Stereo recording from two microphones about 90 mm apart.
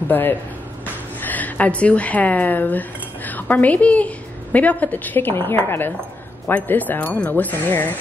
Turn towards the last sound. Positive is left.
turn(degrees=20)  # may be behind; listen again after turning